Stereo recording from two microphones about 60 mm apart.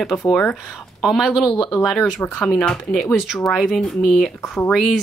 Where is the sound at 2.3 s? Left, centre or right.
Centre.